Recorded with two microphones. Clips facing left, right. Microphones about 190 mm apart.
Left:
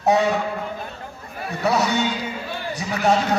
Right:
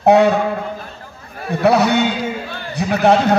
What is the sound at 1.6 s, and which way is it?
A man's voice, 60° right (ahead or behind).